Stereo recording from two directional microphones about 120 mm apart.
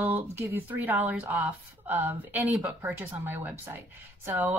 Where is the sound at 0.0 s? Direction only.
20° right (ahead or behind).